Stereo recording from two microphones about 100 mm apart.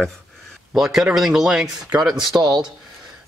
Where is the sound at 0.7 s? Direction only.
5° right (ahead or behind).